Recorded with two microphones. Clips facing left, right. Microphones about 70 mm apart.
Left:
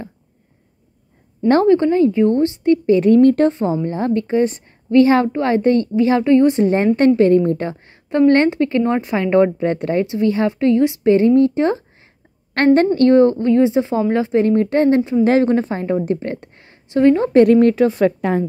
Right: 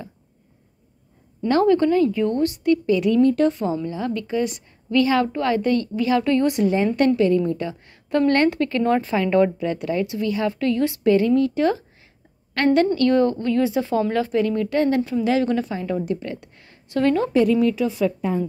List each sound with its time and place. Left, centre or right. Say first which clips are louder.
1.5 s a woman's voice: left 4 dB; left
3.4 s a woman's voice: left 4 dB; left
7.2 s speech: left 6 dB; left
7.8 s a sound: left 1 dB; left
8.3 s speech: left 5 dB; left
12.6 s a woman's voice: left 5 dB; left
14.4 s a woman's voice: left 6 dB; left
15.2 s a woman's voice: left 6 dB; left
17.3 s speech: left 7 dB; left